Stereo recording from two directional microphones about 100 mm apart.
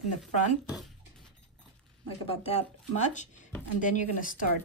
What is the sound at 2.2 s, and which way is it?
Speech, 90° left.